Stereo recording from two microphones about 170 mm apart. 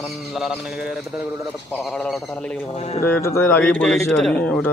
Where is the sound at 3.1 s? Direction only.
15° left (ahead or behind).